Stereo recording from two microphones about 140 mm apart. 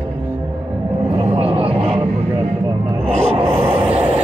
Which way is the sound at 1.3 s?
45° right (ahead or behind).